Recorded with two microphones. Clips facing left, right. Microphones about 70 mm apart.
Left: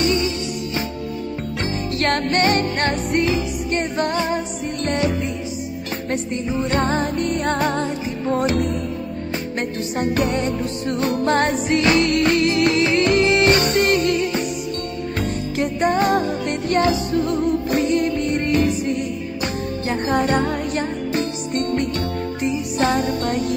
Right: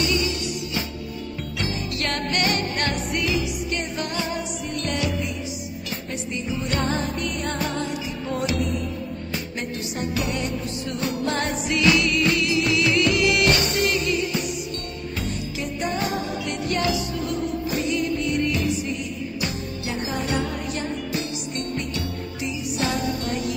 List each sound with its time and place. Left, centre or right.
0.0 s music: left
1.6 s music: left
6.5 s music: left
13.6 s music: left